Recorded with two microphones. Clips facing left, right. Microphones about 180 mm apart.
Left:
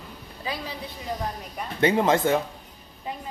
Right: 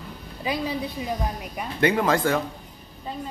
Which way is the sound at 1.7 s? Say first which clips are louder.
Left 1 dB; 25° left (ahead or behind).